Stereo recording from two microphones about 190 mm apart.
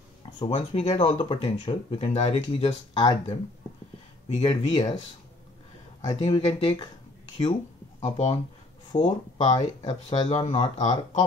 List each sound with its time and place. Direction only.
0.2 s speech: 30° left (ahead or behind)
4.4 s speech: 25° left (ahead or behind)
6.0 s speech: 25° left (ahead or behind)
8.0 s speech: 35° left (ahead or behind)
10.5 s speech: 35° left (ahead or behind)